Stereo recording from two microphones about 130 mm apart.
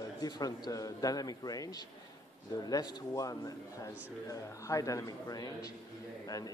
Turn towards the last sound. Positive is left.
turn(degrees=30)  # may be behind; listen again after turning